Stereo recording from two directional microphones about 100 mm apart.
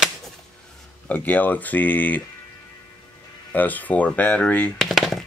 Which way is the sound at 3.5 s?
15° left (ahead or behind).